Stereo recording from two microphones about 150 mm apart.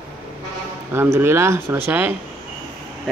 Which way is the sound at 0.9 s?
15° right (ahead or behind).